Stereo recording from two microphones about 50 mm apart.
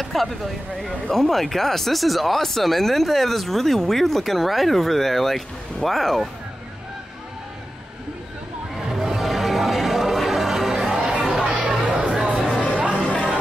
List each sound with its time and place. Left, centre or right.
0.0 s speech: centre
8.7 s music: centre
11.8 s a sound: right
12.7 s music: centre